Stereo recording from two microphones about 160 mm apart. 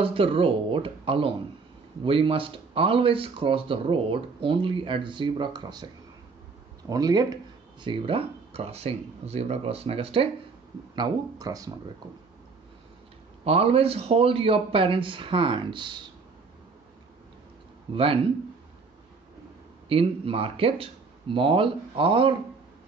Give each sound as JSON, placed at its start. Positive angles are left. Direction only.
{"t": 0.0, "sound": "speech", "side_deg": -35}
{"t": 6.9, "sound": "speech", "side_deg": -25}
{"t": 11.0, "sound": "speech", "side_deg": -25}
{"t": 13.4, "sound": "speech", "side_deg": -40}
{"t": 17.9, "sound": "speech", "side_deg": -35}
{"t": 19.9, "sound": "speech", "side_deg": -35}